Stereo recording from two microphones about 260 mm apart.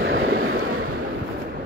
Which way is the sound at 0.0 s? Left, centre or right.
Right.